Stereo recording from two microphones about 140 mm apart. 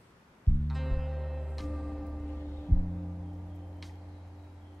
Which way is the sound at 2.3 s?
10° left (ahead or behind).